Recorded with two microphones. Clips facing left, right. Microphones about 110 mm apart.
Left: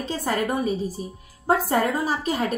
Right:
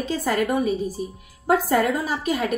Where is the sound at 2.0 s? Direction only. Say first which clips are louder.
Even; 35° left (ahead or behind).